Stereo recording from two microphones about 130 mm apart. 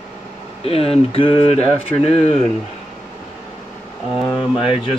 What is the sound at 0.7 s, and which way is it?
Speech, 50° left (ahead or behind).